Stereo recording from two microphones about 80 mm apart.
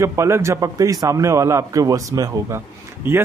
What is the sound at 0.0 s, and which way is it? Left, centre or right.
A man's voice, right.